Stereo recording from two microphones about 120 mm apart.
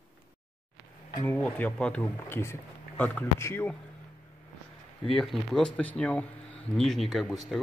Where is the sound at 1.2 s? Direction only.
15° left (ahead or behind).